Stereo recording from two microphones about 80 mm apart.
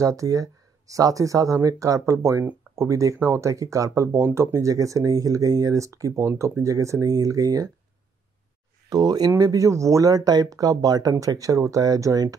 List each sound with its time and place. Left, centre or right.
0.0 s speech: right
8.8 s speech: right